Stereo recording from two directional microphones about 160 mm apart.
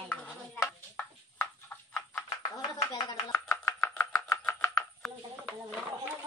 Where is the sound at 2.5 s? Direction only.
20° left (ahead or behind).